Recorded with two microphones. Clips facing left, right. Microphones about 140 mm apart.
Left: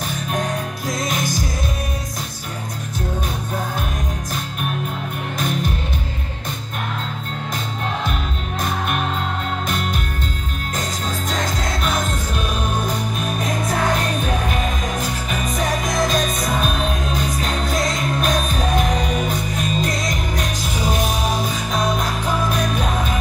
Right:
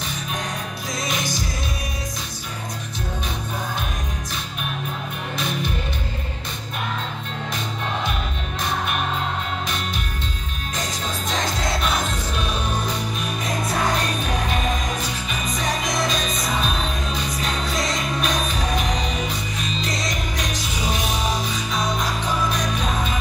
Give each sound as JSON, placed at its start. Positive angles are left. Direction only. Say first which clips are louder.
{"t": 12.8, "sound": "music", "louder": "left 3 dB", "side_deg": 50}
{"t": 15.0, "sound": "music", "louder": "left 4 dB", "side_deg": 50}
{"t": 21.7, "sound": "music", "louder": "left 3 dB", "side_deg": 50}